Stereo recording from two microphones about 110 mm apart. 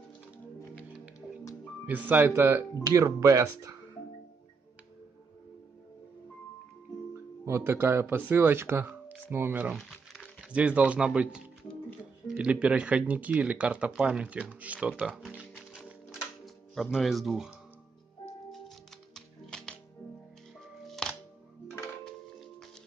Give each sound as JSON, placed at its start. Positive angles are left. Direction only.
{"t": 1.9, "sound": "speech", "side_deg": -15}
{"t": 7.2, "sound": "speech", "side_deg": -25}
{"t": 9.7, "sound": "crumpling", "side_deg": 0}
{"t": 10.5, "sound": "speech", "side_deg": -10}
{"t": 15.7, "sound": "music", "side_deg": -5}
{"t": 16.7, "sound": "speech", "side_deg": 0}
{"t": 19.1, "sound": "music", "side_deg": 5}
{"t": 20.8, "sound": "music", "side_deg": 5}
{"t": 21.6, "sound": "music", "side_deg": 20}